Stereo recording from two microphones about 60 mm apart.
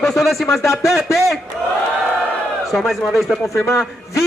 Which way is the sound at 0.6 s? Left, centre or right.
Left.